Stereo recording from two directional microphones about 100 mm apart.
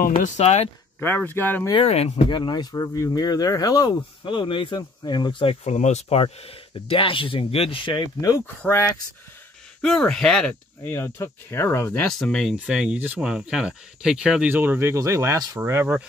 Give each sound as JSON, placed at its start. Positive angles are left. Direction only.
{"t": 0.1, "sound": "speech", "side_deg": 90}
{"t": 0.9, "sound": "speech", "side_deg": 20}
{"t": 1.8, "sound": "speech", "side_deg": 85}
{"t": 2.2, "sound": "speech", "side_deg": 50}
{"t": 6.2, "sound": "speech", "side_deg": 65}
{"t": 8.2, "sound": "speech", "side_deg": 30}
{"t": 9.8, "sound": "speech", "side_deg": 10}
{"t": 10.8, "sound": "speech", "side_deg": 25}
{"t": 12.1, "sound": "speech", "side_deg": 5}
{"t": 14.5, "sound": "speech", "side_deg": -20}
{"t": 15.3, "sound": "speech", "side_deg": -40}
{"t": 15.6, "sound": "speech", "side_deg": -25}